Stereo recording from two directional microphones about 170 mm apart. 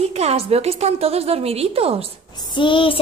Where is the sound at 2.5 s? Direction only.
30° left (ahead or behind).